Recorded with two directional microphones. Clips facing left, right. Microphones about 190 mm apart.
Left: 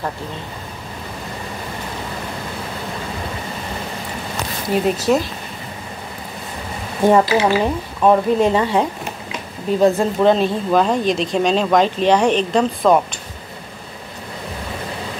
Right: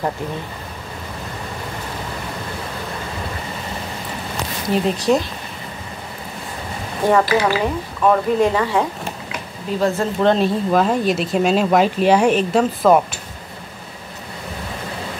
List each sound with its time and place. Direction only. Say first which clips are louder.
4.6 s speech: left 1 dB; 5° left (ahead or behind)
7.1 s speech: left 2 dB; 25° left (ahead or behind)
10.2 s speech: even; centre (ahead or behind)